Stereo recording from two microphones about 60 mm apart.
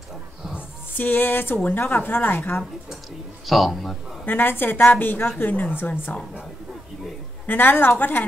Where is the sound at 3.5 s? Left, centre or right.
Centre.